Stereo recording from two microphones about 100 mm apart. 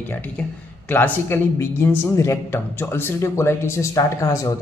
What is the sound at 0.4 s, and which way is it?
Speech, 10° left (ahead or behind).